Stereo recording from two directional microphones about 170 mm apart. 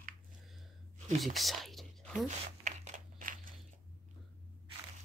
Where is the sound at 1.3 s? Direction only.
Centre (ahead or behind).